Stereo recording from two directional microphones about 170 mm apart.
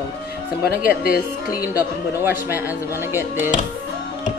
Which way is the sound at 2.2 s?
10° right (ahead or behind).